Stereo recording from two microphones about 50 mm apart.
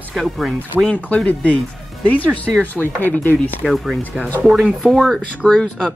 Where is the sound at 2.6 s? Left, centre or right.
Left.